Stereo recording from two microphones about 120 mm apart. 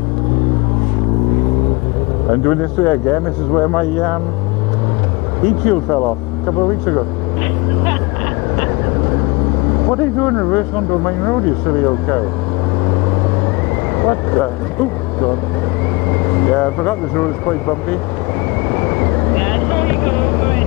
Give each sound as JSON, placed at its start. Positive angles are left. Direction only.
{"t": 2.4, "sound": "speech", "side_deg": 15}
{"t": 5.7, "sound": "speech", "side_deg": 20}
{"t": 9.8, "sound": "speech", "side_deg": 15}
{"t": 14.0, "sound": "speech", "side_deg": 15}
{"t": 16.1, "sound": "speech", "side_deg": 15}
{"t": 18.7, "sound": "vehicle", "side_deg": 15}